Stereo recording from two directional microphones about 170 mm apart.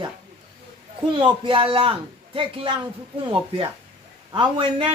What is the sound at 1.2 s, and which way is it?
Speech, 30° right (ahead or behind).